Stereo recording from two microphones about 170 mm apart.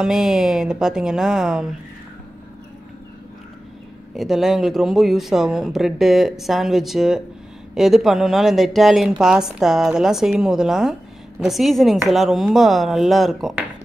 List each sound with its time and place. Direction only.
0.0 s speech: 5° right (ahead or behind)
4.1 s speech: centre (ahead or behind)